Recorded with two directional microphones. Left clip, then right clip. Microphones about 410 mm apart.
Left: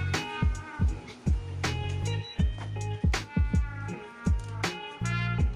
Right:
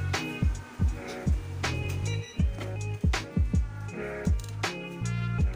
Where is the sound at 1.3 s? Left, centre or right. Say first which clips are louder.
Left 3 dB; centre.